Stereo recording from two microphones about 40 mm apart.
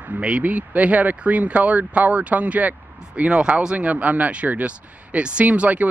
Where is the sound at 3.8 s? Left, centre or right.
Right.